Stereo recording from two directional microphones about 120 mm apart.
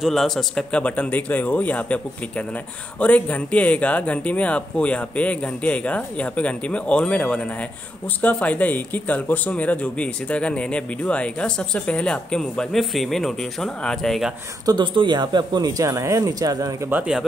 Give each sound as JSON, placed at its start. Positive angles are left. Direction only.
{"t": 0.0, "sound": "speech", "side_deg": 0}
{"t": 14.7, "sound": "speech", "side_deg": -40}
{"t": 16.9, "sound": "speech", "side_deg": -5}